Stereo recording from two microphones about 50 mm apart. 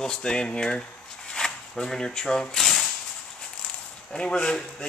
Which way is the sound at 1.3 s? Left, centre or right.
Centre.